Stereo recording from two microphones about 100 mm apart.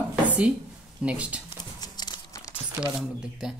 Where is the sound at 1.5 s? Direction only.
40° left (ahead or behind).